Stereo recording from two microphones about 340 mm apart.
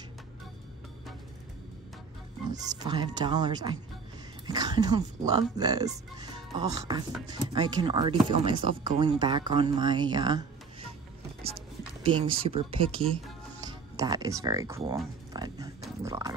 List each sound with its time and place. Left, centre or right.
2.5 s speech: centre
12.0 s speech: centre
13.6 s music: centre
15.8 s pig: centre